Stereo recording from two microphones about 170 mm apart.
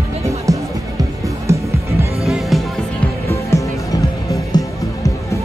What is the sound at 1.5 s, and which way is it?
Music, 15° right (ahead or behind).